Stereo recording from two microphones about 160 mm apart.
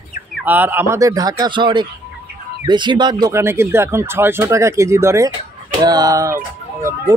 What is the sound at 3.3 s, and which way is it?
Speech, 15° right (ahead or behind).